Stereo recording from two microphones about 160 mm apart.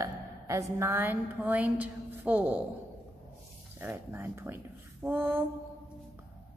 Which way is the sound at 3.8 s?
15° right (ahead or behind).